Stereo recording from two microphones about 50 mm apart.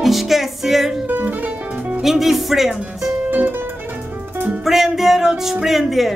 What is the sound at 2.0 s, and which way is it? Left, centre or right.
Speech, centre.